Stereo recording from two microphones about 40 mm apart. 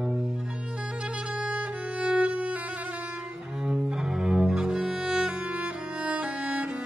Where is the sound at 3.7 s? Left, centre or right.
Centre.